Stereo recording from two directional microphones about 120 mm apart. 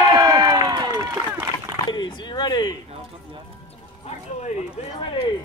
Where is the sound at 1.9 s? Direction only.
35° left (ahead or behind).